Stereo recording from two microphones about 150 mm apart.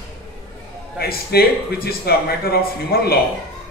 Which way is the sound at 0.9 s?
90° left.